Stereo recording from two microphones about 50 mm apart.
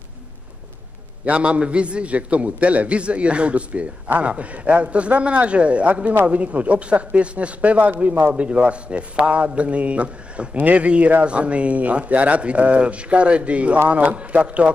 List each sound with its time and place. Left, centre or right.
1.2 s a man's voice: right